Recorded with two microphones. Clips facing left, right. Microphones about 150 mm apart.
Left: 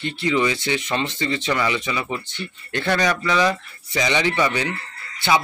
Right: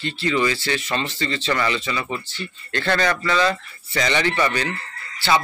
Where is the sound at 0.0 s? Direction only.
20° left (ahead or behind).